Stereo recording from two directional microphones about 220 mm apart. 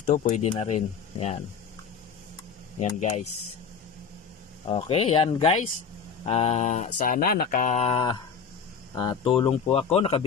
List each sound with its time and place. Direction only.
0.1 s speech: 30° left (ahead or behind)
2.8 s speech: 35° left (ahead or behind)
4.6 s speech: 25° left (ahead or behind)